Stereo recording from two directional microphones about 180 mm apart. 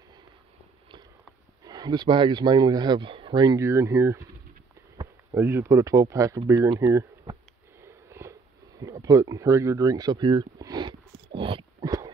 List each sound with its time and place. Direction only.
1.6 s speech: 25° right (ahead or behind)
5.3 s speech: 15° right (ahead or behind)
7.8 s a sound: 15° right (ahead or behind)